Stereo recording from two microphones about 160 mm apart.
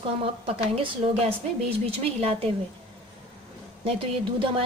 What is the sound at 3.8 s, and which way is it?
Speech, 35° right (ahead or behind).